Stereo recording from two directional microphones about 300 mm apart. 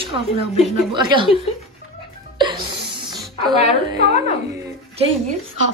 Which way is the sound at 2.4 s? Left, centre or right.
Centre.